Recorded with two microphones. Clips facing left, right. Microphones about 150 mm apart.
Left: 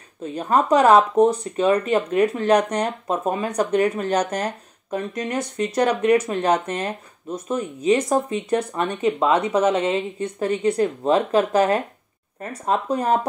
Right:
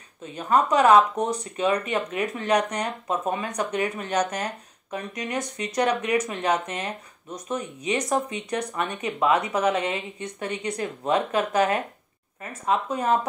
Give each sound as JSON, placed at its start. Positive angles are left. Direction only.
{"t": 0.2, "sound": "speech", "side_deg": 35}